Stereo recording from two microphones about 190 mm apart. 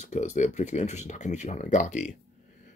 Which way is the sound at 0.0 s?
40° left (ahead or behind).